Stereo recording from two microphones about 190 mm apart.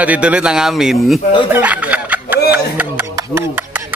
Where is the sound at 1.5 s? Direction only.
10° right (ahead or behind).